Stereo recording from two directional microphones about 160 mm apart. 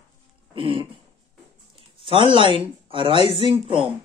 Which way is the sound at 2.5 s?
35° right (ahead or behind).